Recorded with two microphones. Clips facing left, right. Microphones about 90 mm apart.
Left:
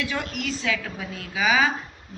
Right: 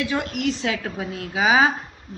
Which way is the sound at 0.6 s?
35° right (ahead or behind).